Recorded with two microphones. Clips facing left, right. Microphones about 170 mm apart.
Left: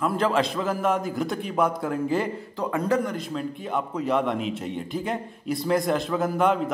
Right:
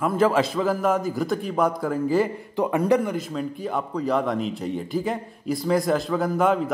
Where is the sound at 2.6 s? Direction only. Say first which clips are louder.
Right 4 dB; 20° right (ahead or behind).